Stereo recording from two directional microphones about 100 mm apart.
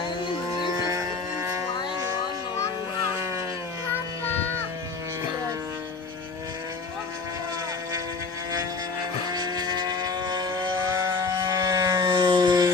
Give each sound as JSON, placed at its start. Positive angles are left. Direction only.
{"t": 0.8, "sound": "music", "side_deg": -30}
{"t": 9.3, "sound": "vehicle", "side_deg": -40}
{"t": 11.4, "sound": "a sound", "side_deg": -35}